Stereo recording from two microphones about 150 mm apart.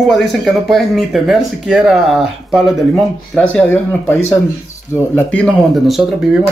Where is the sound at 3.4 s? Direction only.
10° left (ahead or behind).